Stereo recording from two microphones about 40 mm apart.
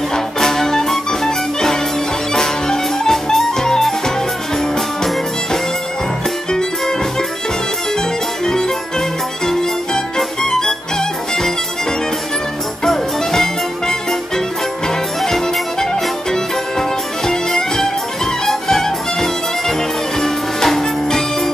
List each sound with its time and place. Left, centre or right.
0.1 s music: centre
9.5 s music: centre
12.8 s music: centre
15.2 s music: centre